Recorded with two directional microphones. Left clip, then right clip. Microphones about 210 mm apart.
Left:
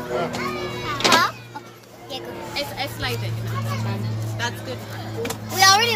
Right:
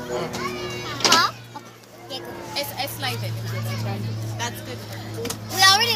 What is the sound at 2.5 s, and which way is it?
Music, 50° right (ahead or behind).